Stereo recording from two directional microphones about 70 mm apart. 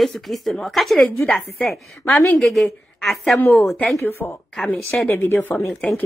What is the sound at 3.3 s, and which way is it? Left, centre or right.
A woman's voice, left.